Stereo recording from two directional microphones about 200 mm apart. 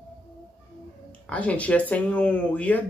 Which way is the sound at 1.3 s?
5° left (ahead or behind).